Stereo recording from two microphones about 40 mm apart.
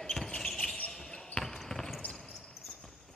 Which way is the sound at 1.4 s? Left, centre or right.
Centre.